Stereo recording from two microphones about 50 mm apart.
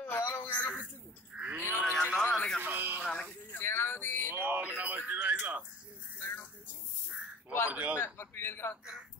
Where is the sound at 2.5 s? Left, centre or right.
Right.